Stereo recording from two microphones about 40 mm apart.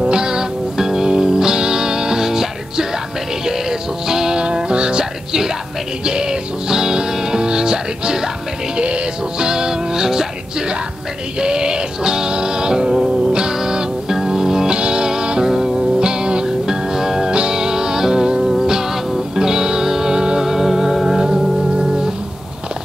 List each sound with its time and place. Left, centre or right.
0.0 s music: centre
6.0 s music: centre
11.3 s music: centre